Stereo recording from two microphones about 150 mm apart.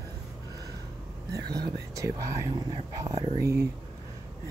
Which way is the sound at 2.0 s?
20° right (ahead or behind).